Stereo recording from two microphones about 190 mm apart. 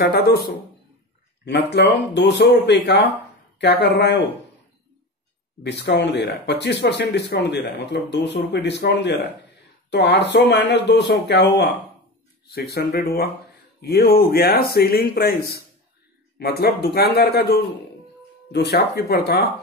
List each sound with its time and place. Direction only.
0.0 s speech: 55° left (ahead or behind)
1.7 s speech: 65° left (ahead or behind)
5.6 s speech: 65° left (ahead or behind)